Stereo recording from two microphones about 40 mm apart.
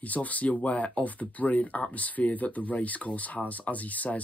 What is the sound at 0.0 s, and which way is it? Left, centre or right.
Speech, left.